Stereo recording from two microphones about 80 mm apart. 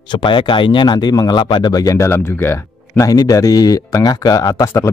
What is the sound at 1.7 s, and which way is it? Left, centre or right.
Speech, left.